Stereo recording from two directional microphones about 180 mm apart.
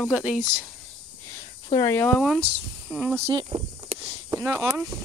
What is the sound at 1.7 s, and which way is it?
Speech, 20° left (ahead or behind).